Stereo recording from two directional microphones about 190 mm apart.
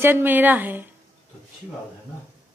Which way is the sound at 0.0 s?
10° right (ahead or behind).